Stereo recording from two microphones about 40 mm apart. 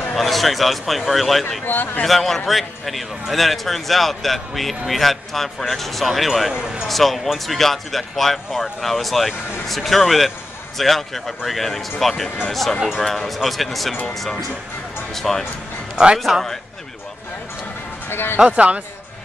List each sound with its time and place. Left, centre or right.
0.1 s a man's voice: centre
1.7 s speech: left
2.0 s a man's voice: centre
6.5 s speech: centre
6.9 s a man's voice: centre
15.1 s speech: centre
16.3 s speech: centre
18.1 s speech: left